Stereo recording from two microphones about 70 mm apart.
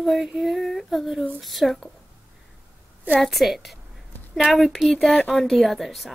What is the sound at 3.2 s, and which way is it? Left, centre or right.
Speech, centre.